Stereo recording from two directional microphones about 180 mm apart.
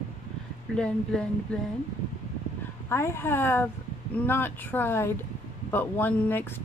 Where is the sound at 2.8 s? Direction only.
15° left (ahead or behind).